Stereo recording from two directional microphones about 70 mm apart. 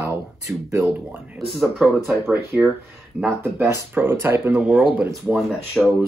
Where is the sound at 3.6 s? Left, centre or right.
Right.